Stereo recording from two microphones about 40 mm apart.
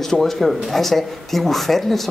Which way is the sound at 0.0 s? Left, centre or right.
Centre.